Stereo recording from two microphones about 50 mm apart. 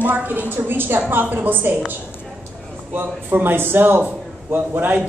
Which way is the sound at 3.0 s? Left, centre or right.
Right.